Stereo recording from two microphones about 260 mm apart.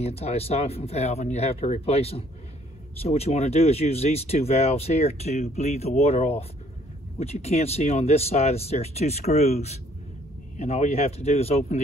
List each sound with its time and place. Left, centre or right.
0.0 s speech: left